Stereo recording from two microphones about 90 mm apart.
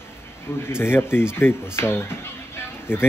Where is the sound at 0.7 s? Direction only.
25° left (ahead or behind).